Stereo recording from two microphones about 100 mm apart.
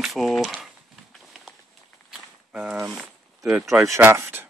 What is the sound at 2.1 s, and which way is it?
Walk, 10° right (ahead or behind).